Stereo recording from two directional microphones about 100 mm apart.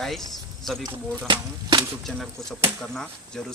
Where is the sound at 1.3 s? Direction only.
50° right (ahead or behind).